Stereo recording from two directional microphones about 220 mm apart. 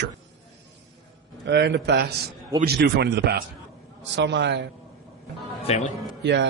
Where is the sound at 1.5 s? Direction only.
50° right (ahead or behind).